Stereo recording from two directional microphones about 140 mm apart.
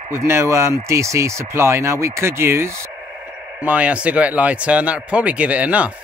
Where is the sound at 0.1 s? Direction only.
20° right (ahead or behind).